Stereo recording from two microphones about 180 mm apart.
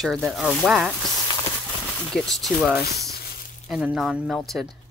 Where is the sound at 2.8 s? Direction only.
60° left (ahead or behind).